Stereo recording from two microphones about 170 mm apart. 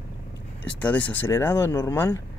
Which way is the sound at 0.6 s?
10° left (ahead or behind).